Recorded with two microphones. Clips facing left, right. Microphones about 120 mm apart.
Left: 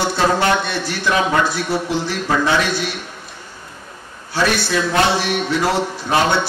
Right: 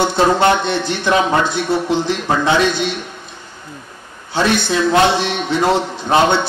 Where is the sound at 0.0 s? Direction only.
25° right (ahead or behind).